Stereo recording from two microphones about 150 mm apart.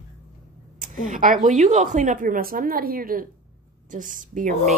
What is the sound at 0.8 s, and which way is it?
A woman's voice, 60° right (ahead or behind).